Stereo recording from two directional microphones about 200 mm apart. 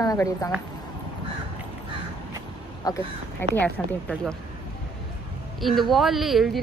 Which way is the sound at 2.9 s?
20° left (ahead or behind).